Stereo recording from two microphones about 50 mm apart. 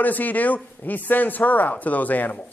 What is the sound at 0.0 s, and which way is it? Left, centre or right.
Speech, left.